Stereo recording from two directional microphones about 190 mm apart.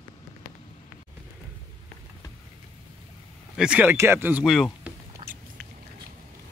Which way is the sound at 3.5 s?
5° right (ahead or behind).